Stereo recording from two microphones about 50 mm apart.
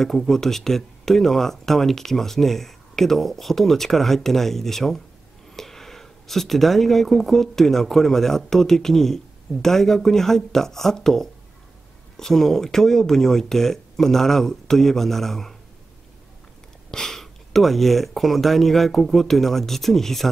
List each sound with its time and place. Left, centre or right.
0.0 s speech: centre
16.9 s speech: centre